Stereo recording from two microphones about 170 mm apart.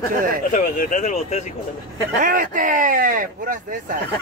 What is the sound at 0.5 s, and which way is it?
Speech, 50° left (ahead or behind).